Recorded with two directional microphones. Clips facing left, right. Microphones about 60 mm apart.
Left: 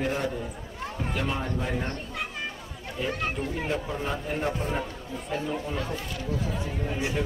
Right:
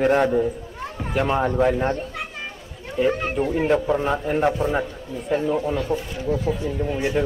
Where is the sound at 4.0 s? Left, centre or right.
Right.